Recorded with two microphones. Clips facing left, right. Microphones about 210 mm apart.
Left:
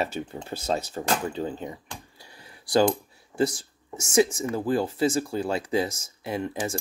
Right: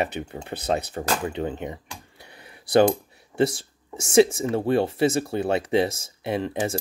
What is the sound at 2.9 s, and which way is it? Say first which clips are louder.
Speech: right 2 dB; 25° right (ahead or behind).